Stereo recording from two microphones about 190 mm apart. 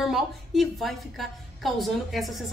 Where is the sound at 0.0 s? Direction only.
Centre (ahead or behind).